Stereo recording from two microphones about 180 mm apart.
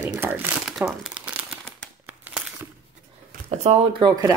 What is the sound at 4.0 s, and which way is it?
Speech, 25° right (ahead or behind).